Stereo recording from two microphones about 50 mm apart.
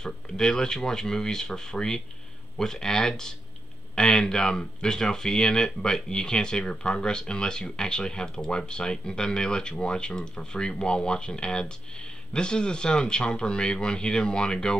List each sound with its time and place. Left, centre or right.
0.0 s speech: centre